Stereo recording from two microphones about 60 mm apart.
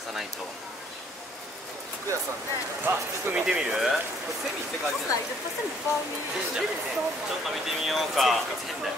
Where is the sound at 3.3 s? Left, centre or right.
Centre.